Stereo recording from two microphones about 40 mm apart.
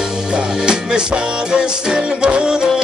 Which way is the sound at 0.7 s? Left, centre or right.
Right.